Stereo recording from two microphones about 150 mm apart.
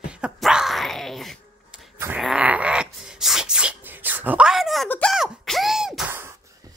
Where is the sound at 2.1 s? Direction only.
5° right (ahead or behind).